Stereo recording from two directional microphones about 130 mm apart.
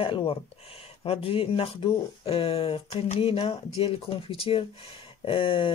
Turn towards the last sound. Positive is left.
turn(degrees=40)  # may be behind; listen again after turning